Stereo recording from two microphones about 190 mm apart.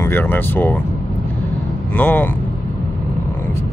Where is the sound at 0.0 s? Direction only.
10° left (ahead or behind).